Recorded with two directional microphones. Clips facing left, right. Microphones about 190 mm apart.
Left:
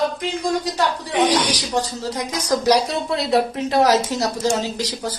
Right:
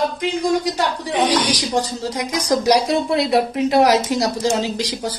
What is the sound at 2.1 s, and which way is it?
A woman's voice, 15° right (ahead or behind).